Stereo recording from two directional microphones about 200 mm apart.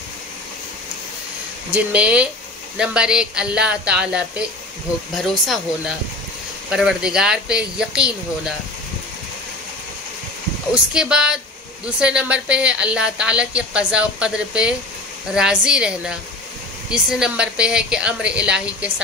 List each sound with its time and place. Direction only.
1.7 s a woman's voice: 5° right (ahead or behind)
6.7 s a woman's voice: 5° right (ahead or behind)
10.7 s a woman's voice: 5° right (ahead or behind)